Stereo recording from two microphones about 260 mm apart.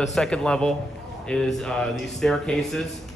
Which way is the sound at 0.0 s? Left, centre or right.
Centre.